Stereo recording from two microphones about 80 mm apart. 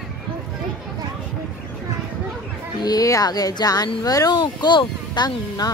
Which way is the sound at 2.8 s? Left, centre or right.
Left.